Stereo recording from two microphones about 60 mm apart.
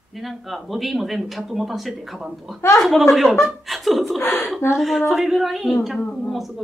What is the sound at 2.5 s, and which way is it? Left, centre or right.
Speech, left.